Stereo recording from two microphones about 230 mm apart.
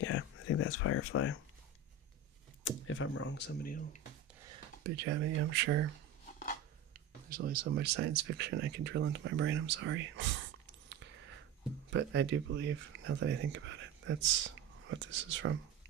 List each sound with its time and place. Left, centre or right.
0.0 s a sound: left
2.6 s speech: left
4.8 s speech: right
7.2 s speech: right
11.9 s speech: right